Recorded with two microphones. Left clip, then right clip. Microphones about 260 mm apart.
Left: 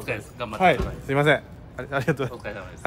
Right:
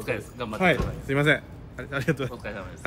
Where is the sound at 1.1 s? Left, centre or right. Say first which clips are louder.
Left 3 dB; centre.